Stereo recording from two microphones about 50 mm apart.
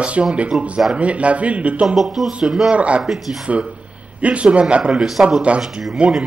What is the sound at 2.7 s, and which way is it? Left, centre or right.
Speech, right.